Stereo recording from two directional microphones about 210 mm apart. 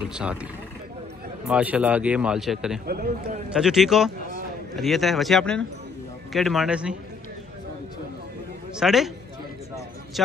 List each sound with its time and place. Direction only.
0.0 s a man's voice: 5° right (ahead or behind)
1.5 s a man's voice: 5° right (ahead or behind)
2.9 s a man's voice: 45° right (ahead or behind)
3.4 s a man's voice: centre (ahead or behind)
8.7 s a man's voice: centre (ahead or behind)